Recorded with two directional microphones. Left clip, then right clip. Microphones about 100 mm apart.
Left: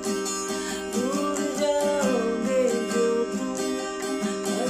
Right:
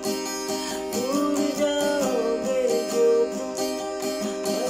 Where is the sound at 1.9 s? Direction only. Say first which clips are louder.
Right 1 dB; 20° right (ahead or behind).